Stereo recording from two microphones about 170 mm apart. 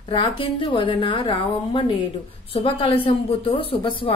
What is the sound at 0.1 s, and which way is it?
A woman's voice, 30° left (ahead or behind).